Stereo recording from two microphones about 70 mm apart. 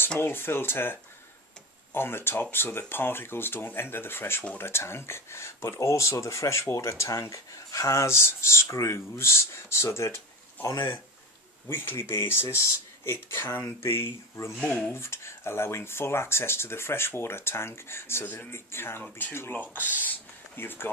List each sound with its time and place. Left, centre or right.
0.2 s speech: left
2.0 s speech: left